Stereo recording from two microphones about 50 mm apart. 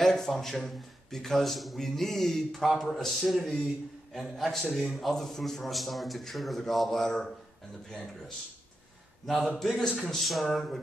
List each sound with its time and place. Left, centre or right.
0.0 s a man's voice: centre
9.2 s a man's voice: centre